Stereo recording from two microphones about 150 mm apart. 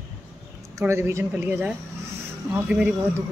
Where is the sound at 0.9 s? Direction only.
20° right (ahead or behind).